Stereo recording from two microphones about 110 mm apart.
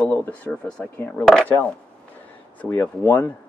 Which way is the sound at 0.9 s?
20° left (ahead or behind).